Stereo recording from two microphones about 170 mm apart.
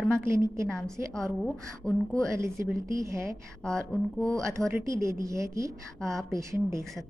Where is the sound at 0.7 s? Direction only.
5° left (ahead or behind).